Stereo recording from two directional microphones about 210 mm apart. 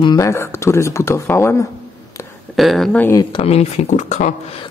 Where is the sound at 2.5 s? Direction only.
Centre (ahead or behind).